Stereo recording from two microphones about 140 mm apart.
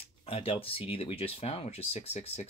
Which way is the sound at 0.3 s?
40° left (ahead or behind).